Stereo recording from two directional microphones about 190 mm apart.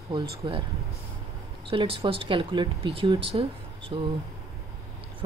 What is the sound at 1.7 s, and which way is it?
Speech, 30° right (ahead or behind).